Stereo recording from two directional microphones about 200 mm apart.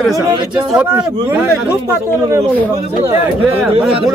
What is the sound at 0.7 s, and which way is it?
Speech, 10° right (ahead or behind).